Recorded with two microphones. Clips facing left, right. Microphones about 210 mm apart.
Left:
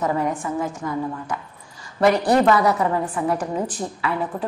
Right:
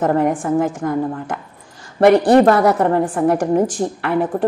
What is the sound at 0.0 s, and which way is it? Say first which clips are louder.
A woman's voice: right 6 dB; 50° right (ahead or behind).